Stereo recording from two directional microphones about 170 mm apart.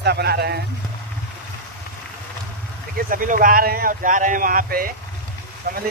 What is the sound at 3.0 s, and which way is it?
A man's voice, 55° right (ahead or behind).